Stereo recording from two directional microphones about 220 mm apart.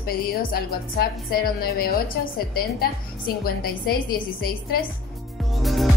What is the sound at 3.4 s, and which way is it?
Speech, 45° left (ahead or behind).